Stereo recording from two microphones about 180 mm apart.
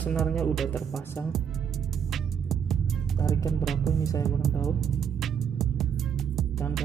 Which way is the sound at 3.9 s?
20° left (ahead or behind).